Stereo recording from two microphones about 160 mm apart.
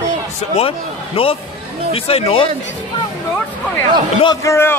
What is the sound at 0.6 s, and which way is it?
Speech, 35° left (ahead or behind).